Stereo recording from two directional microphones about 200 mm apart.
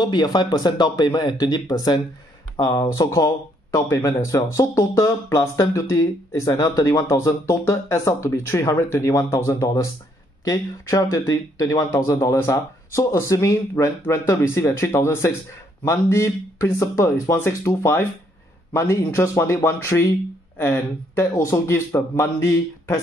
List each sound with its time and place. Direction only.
0.0 s speech: 20° left (ahead or behind)